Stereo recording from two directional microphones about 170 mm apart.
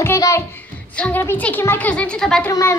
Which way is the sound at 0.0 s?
15° left (ahead or behind).